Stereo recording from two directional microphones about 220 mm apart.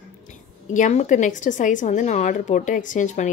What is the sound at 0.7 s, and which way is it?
Speech, 35° left (ahead or behind).